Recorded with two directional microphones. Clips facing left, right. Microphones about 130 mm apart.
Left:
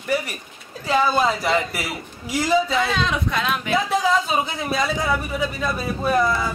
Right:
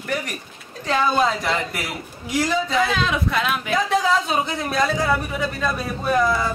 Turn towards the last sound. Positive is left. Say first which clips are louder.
# even
turn(degrees=0)  # may be behind; listen again after turning